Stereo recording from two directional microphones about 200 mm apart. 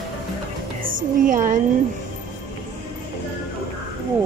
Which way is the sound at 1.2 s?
40° right (ahead or behind).